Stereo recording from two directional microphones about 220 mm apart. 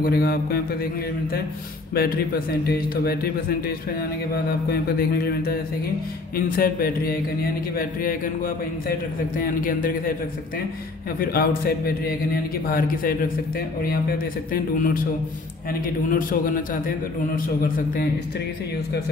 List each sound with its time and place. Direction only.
0.0 s a man's voice: 45° left (ahead or behind)
2.0 s a man's voice: 45° left (ahead or behind)
9.4 s a man's voice: 40° left (ahead or behind)
11.1 s a man's voice: 45° left (ahead or behind)
16.1 s a man's voice: 40° left (ahead or behind)